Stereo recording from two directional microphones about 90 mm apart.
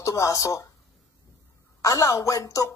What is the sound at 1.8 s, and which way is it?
Speech, 40° left (ahead or behind).